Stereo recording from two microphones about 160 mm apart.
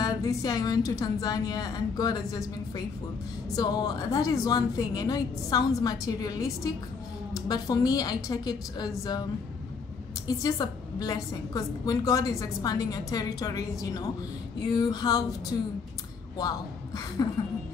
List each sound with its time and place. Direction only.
0.0 s a woman's voice: 20° left (ahead or behind)
10.2 s a woman's voice: 25° left (ahead or behind)
16.3 s a man's voice: 25° left (ahead or behind)